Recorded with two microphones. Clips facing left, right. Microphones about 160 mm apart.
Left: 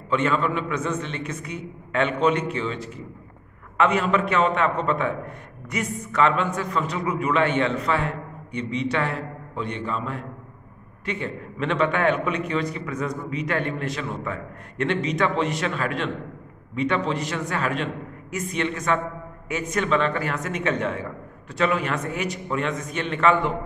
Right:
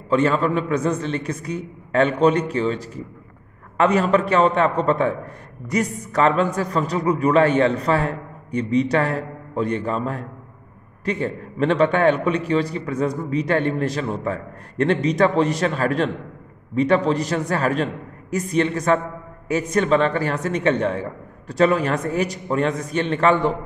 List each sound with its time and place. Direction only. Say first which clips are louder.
0.1 s a man's voice: right 4 dB; 35° right (ahead or behind)